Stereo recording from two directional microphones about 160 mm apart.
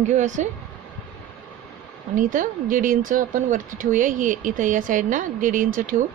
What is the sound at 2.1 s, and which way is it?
A woman's voice, 55° right (ahead or behind).